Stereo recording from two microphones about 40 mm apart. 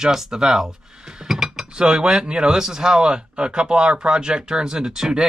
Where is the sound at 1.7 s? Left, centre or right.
Right.